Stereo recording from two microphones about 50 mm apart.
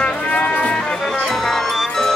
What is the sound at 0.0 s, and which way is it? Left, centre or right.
Music, left.